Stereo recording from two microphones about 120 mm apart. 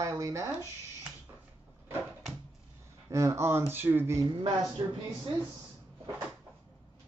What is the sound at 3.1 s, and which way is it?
Speech, 25° right (ahead or behind).